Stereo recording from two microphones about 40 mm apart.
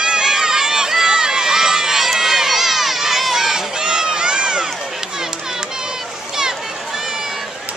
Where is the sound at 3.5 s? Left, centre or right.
Centre.